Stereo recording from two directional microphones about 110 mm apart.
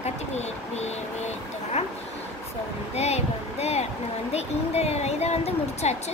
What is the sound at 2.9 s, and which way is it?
A woman's voice, 75° left (ahead or behind).